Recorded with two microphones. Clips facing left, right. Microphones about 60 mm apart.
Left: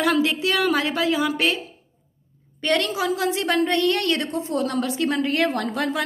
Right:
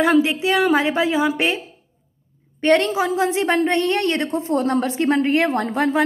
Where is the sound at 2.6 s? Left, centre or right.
Right.